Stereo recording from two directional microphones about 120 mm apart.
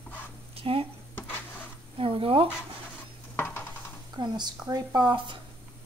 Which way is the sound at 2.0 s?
50° right (ahead or behind).